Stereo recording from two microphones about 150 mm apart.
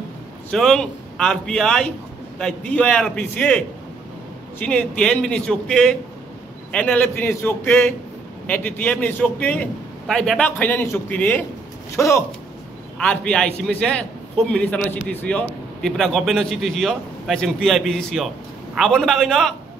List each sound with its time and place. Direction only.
0.5 s a man's voice: 5° left (ahead or behind)
13.0 s a man's voice: 5° left (ahead or behind)